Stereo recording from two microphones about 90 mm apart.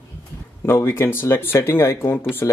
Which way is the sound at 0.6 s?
30° left (ahead or behind).